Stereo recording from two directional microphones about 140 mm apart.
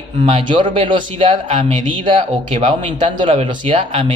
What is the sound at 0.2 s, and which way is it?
Speech, 40° right (ahead or behind).